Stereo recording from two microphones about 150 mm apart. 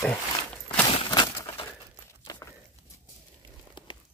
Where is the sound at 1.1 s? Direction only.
30° left (ahead or behind).